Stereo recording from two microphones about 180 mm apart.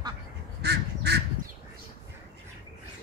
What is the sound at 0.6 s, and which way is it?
Duck, 65° right (ahead or behind).